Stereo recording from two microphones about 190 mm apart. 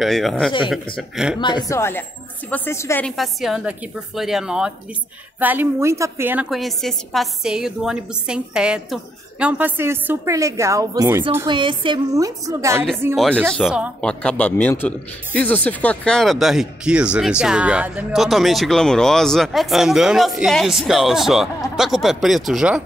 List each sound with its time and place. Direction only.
0.0 s speech: centre (ahead or behind)
1.4 s speech: 20° left (ahead or behind)
3.1 s a woman's voice: centre (ahead or behind); by 12.7 s 15° right (ahead or behind)
13.1 s speech: centre (ahead or behind)
14.0 s speech: 5° left (ahead or behind)